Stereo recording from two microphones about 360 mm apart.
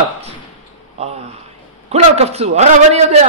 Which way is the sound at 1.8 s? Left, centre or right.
Centre.